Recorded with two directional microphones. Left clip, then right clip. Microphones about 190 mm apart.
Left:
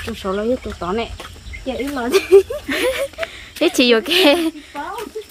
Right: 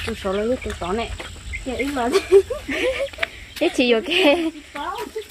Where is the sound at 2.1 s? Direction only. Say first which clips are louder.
Left 4 dB; 60° left (ahead or behind).